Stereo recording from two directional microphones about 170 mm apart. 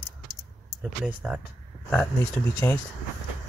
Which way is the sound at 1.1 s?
10° right (ahead or behind).